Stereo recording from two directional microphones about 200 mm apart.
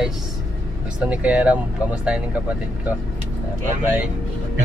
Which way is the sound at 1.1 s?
5° right (ahead or behind).